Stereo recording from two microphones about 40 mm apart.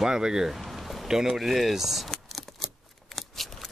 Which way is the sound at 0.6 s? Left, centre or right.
Centre.